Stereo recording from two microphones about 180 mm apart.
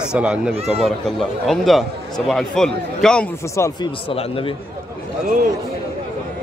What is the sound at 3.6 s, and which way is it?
Speech, 25° left (ahead or behind).